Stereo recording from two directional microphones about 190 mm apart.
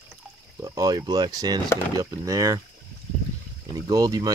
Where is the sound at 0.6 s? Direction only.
20° right (ahead or behind).